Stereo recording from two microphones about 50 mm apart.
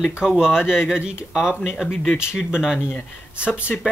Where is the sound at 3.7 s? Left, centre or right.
Centre.